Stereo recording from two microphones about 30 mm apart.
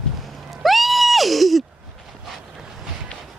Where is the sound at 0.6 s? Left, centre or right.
Centre.